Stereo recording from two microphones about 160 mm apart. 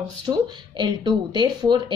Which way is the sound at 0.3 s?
25° right (ahead or behind).